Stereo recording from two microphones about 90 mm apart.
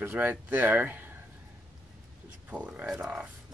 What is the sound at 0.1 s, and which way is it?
Speech, 20° right (ahead or behind).